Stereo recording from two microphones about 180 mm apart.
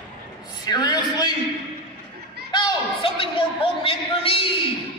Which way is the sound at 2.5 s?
25° left (ahead or behind).